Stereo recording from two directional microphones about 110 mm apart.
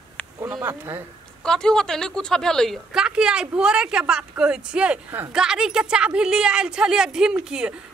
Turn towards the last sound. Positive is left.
turn(degrees=-10)  # may be behind; listen again after turning